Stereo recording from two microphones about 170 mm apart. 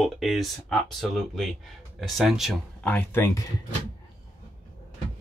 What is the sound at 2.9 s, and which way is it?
Speech, 15° left (ahead or behind).